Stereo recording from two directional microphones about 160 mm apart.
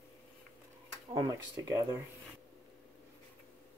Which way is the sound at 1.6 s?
20° right (ahead or behind).